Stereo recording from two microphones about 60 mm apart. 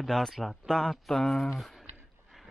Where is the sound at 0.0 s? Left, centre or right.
Centre.